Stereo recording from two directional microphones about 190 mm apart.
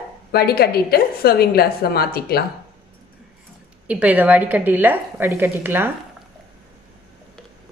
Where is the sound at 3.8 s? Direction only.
10° right (ahead or behind).